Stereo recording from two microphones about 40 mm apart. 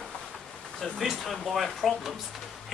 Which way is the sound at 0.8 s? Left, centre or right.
Centre.